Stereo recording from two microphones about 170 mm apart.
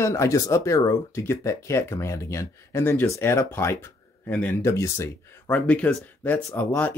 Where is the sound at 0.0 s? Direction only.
15° left (ahead or behind).